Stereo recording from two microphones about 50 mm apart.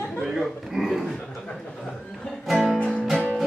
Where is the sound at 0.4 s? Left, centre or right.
Centre.